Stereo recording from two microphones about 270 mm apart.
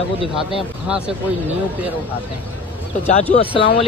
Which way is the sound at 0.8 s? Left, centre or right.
Centre.